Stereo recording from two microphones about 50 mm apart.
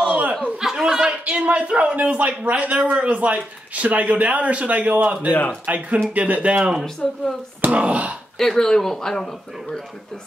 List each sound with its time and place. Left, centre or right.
0.0 s chuckle: right
0.6 s a man's voice: centre; by 5.3 s right
5.3 s speech: left
5.7 s a man's voice: right
6.8 s speech: centre
7.6 s a man's voice: right
8.4 s speech: centre